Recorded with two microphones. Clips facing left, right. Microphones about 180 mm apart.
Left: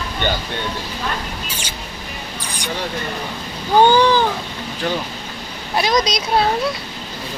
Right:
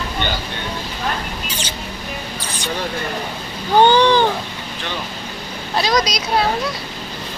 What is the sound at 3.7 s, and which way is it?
Speech, 5° left (ahead or behind).